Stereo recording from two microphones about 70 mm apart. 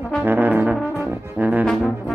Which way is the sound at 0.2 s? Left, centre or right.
Right.